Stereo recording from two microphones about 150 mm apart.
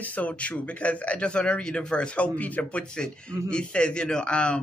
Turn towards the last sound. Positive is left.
turn(degrees=5)  # may be behind; listen again after turning